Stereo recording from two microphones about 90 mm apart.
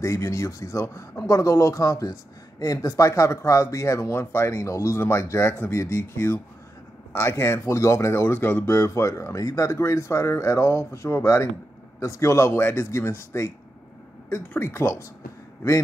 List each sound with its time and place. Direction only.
0.0 s speech: 35° left (ahead or behind)